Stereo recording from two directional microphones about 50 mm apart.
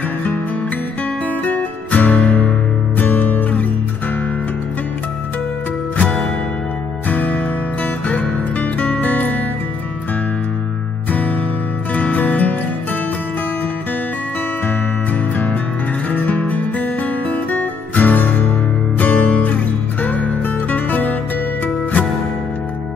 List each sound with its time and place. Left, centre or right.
1.2 s music: left
5.9 s music: left
7.1 s music: left
11.1 s music: left
15.3 s music: left
18.9 s music: left
19.4 s music: left